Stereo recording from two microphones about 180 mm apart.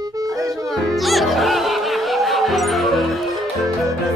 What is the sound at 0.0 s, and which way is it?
Music, 20° right (ahead or behind).